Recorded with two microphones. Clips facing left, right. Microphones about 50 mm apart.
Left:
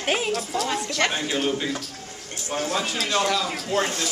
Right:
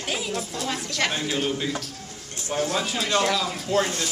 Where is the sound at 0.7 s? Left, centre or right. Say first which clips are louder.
Even; centre.